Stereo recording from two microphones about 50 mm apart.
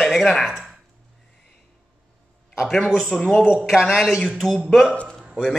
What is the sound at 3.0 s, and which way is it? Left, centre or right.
Speech, centre.